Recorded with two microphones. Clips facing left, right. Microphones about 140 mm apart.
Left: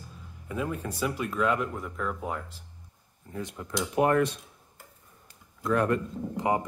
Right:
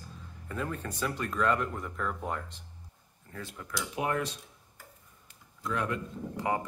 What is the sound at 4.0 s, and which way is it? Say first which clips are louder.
Speech: left 8 dB; 55° left (ahead or behind).